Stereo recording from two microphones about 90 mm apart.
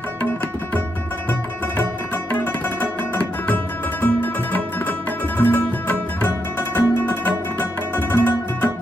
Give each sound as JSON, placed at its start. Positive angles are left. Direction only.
{"t": 2.3, "sound": "music", "side_deg": 15}